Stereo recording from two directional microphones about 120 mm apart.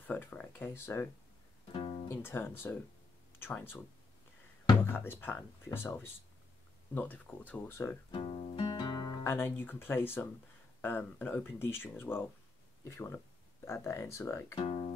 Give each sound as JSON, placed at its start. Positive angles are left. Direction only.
{"t": 0.0, "sound": "speech", "side_deg": 15}
{"t": 1.7, "sound": "music", "side_deg": 50}
{"t": 2.0, "sound": "speech", "side_deg": 20}
{"t": 4.8, "sound": "speech", "side_deg": 20}
{"t": 8.1, "sound": "music", "side_deg": 45}
{"t": 9.2, "sound": "speech", "side_deg": 20}
{"t": 14.5, "sound": "speech", "side_deg": 50}